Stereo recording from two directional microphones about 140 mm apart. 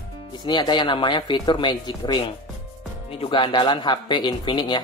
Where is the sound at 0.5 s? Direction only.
35° left (ahead or behind).